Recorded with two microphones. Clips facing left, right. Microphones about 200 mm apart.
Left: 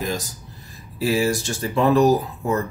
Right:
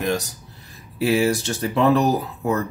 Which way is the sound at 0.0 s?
65° right (ahead or behind).